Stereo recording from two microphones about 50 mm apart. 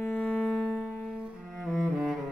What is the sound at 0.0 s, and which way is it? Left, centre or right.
Music, left.